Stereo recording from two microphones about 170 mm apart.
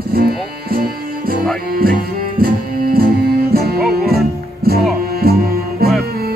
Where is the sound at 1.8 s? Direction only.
60° right (ahead or behind).